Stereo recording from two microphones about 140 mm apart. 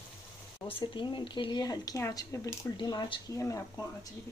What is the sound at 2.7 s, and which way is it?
Speech, 30° left (ahead or behind).